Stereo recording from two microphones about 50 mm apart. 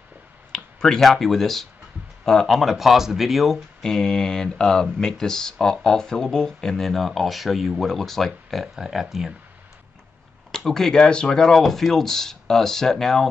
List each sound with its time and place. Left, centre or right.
0.5 s speech: centre
3.8 s speech: centre
8.7 s speech: centre
10.5 s speech: centre